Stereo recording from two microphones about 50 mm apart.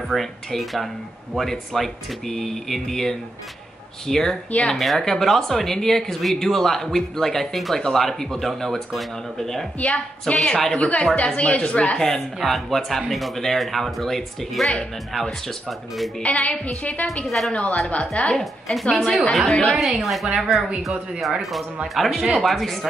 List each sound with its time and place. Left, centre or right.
0.1 s speech: centre
4.5 s a woman's voice: left
4.7 s speech: centre
9.8 s a woman's voice: left
12.4 s speech: centre
16.2 s a woman's voice: left
17.0 s speech: centre
18.1 s a woman's voice: left
18.4 s speech: centre